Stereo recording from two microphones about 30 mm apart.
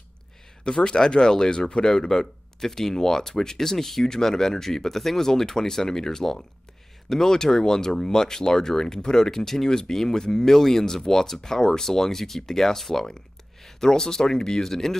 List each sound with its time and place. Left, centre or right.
0.7 s speech: left; by 15.0 s centre